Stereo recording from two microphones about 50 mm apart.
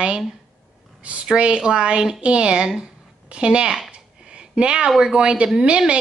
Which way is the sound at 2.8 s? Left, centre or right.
Right.